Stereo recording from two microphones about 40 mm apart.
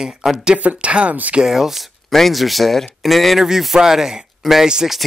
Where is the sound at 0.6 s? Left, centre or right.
Right.